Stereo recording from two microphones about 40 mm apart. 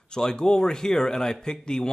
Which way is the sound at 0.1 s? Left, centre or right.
Centre.